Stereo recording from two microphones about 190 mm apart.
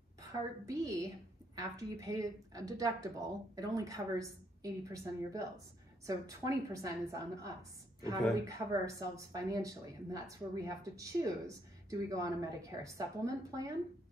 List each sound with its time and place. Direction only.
0.2 s a woman's voice: 15° right (ahead or behind)